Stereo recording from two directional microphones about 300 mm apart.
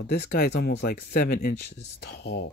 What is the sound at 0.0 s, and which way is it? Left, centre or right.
Speech, left.